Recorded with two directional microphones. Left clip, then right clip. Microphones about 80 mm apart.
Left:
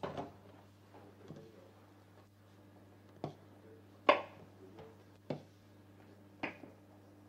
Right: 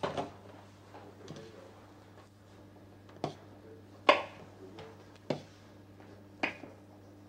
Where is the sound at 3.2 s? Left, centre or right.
Left.